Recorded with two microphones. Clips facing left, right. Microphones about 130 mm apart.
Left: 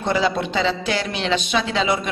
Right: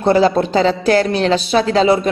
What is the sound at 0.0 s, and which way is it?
Speech, 40° right (ahead or behind).